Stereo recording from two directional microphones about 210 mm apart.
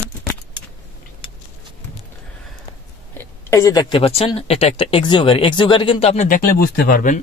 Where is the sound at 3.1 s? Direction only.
15° left (ahead or behind); by 7.2 s 40° left (ahead or behind).